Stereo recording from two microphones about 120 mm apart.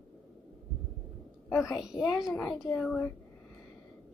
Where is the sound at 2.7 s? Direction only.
10° left (ahead or behind).